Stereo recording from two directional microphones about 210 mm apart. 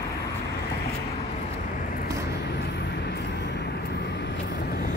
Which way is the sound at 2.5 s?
50° left (ahead or behind).